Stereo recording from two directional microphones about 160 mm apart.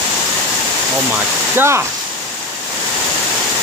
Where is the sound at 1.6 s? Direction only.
15° right (ahead or behind).